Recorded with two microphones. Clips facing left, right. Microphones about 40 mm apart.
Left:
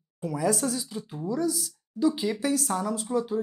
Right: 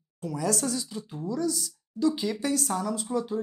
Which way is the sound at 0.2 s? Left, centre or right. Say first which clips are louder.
Left 2 dB; centre.